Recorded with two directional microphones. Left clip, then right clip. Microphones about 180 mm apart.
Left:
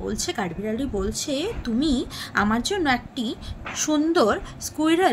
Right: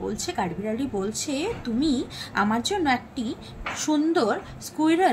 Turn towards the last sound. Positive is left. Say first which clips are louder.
# left 1 dB
turn(degrees=20)  # may be behind; listen again after turning